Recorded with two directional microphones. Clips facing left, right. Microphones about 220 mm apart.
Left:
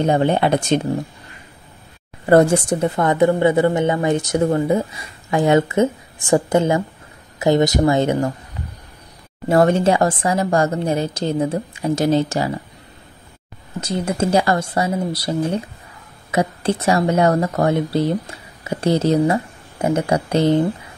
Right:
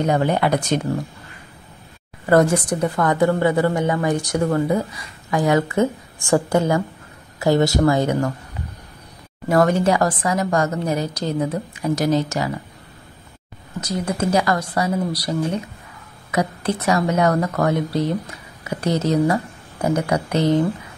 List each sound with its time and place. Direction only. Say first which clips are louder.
0.0 s a woman's voice: left 2 dB; 25° left (ahead or behind)
2.2 s a woman's voice: left 3 dB; 30° left (ahead or behind)
9.5 s a woman's voice: left 2 dB; 25° left (ahead or behind)
13.7 s a woman's voice: left 2 dB; 25° left (ahead or behind)